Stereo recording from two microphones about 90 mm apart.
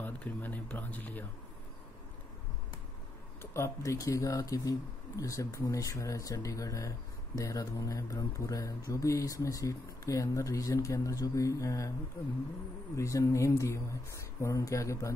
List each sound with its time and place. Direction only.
0.0 s speech: 20° left (ahead or behind)
3.5 s speech: 35° left (ahead or behind)
12.9 s speech: 35° left (ahead or behind)